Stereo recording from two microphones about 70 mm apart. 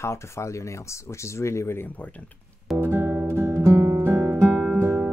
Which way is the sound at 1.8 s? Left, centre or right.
Left.